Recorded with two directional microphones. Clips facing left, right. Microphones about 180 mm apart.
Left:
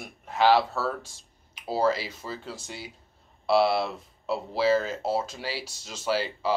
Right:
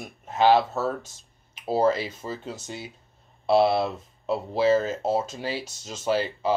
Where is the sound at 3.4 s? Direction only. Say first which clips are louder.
Right 2 dB; 20° right (ahead or behind).